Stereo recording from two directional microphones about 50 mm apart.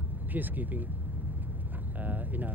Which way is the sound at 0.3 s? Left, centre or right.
Right.